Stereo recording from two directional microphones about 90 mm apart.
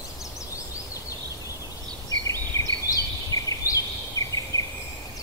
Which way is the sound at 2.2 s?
40° left (ahead or behind).